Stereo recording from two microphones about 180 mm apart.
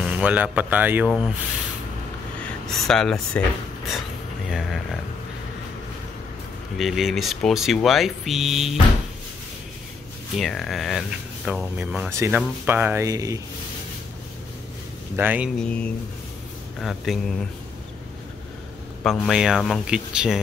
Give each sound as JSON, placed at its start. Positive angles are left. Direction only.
{"t": 0.0, "sound": "speech", "side_deg": -5}
{"t": 2.4, "sound": "speech", "side_deg": 0}
{"t": 4.5, "sound": "speech", "side_deg": 0}
{"t": 6.8, "sound": "speech", "side_deg": 0}
{"t": 10.3, "sound": "speech", "side_deg": 0}
{"t": 15.1, "sound": "speech", "side_deg": -10}
{"t": 15.6, "sound": "speech", "side_deg": 5}
{"t": 19.0, "sound": "speech", "side_deg": 0}